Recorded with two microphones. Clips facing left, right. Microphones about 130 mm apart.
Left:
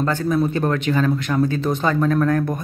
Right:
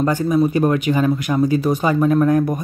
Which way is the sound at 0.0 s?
10° right (ahead or behind).